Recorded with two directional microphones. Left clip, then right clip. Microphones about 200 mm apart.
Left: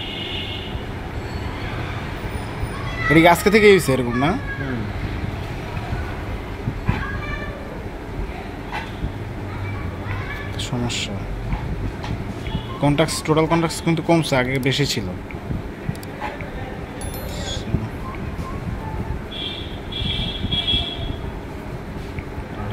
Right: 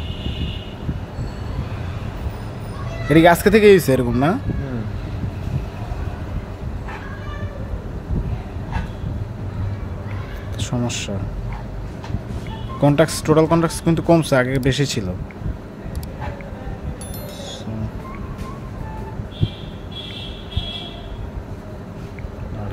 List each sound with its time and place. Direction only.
3.1 s speech: 25° right (ahead or behind)
10.6 s speech: 30° right (ahead or behind)
12.8 s speech: 30° right (ahead or behind)